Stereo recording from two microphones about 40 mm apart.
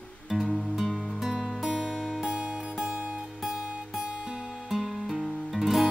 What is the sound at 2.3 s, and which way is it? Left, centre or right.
Music, right.